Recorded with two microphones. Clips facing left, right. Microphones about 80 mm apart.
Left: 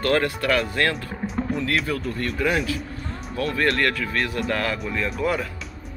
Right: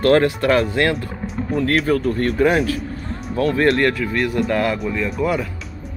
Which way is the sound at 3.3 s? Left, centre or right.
Right.